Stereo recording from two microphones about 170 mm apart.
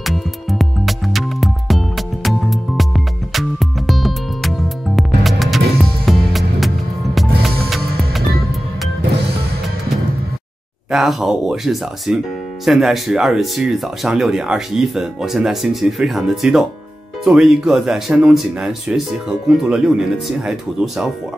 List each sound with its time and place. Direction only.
0.0 s music: centre (ahead or behind)
10.9 s speech: centre (ahead or behind)